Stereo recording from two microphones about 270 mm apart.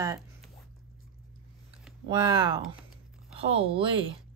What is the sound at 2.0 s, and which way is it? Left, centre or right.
Speech, centre.